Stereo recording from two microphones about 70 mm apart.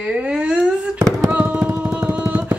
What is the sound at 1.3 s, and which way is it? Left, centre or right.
Music, right.